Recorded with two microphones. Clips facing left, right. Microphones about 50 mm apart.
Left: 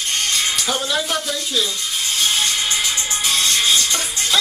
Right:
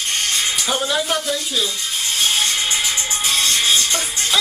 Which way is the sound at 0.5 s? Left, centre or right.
Centre.